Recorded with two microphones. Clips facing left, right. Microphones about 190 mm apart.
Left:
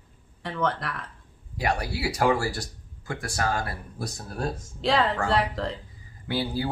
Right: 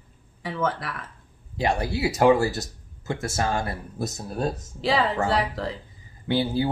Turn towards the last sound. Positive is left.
turn(degrees=-25)  # may be behind; listen again after turning